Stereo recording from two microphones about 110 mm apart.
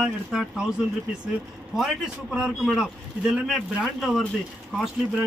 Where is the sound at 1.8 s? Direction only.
5° right (ahead or behind).